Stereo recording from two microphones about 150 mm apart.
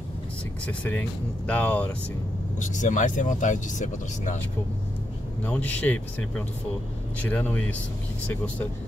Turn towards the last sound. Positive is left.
turn(degrees=10)  # may be behind; listen again after turning